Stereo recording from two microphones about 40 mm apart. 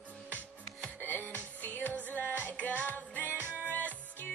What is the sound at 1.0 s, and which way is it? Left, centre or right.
Music, left.